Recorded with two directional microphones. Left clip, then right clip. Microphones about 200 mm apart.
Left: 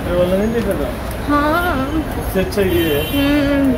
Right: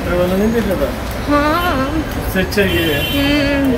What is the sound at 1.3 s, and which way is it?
Speech, 5° left (ahead or behind).